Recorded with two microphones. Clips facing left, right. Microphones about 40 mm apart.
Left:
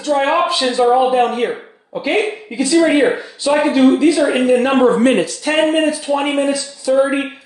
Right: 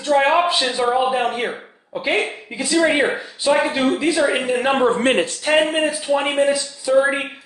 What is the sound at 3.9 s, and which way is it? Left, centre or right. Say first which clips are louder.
Speech: left 6 dB; right.